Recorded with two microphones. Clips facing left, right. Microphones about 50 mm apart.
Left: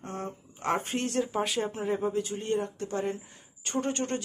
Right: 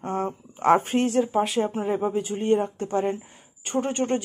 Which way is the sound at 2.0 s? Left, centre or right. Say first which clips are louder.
Right 5 dB; right.